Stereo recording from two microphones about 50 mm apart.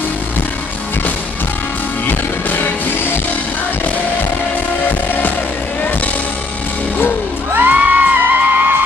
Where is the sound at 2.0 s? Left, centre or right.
Left.